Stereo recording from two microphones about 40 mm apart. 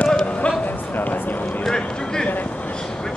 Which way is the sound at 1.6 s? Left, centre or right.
Centre.